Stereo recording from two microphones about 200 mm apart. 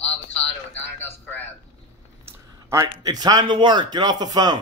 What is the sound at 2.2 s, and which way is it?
A man's voice, 15° right (ahead or behind).